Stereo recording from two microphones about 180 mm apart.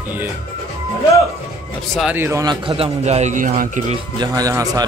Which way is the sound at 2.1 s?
15° right (ahead or behind).